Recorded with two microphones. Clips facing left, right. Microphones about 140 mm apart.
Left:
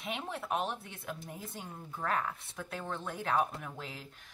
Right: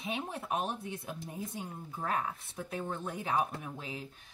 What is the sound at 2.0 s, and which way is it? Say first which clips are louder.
Speech: even; 15° right (ahead or behind).